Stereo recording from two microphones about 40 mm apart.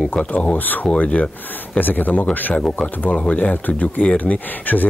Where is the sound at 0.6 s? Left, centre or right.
Left.